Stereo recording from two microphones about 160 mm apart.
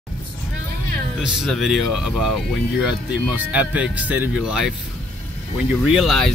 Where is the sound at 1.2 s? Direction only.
Centre (ahead or behind).